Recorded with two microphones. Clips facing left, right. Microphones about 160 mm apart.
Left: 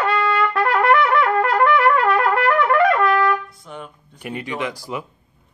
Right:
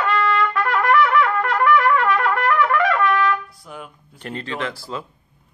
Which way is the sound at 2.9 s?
30° left (ahead or behind).